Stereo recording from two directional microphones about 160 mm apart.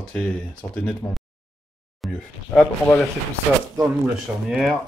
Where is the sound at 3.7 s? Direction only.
15° right (ahead or behind).